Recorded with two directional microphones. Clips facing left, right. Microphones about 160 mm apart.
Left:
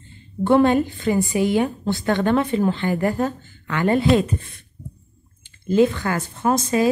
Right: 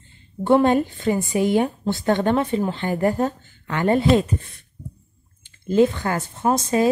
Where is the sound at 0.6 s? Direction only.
35° right (ahead or behind).